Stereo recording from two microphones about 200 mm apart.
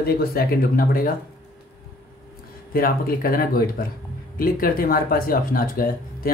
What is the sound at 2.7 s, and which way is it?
Speech, 45° left (ahead or behind).